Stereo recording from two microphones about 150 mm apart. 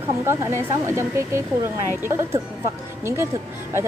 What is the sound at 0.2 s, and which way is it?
A woman's voice, 15° right (ahead or behind).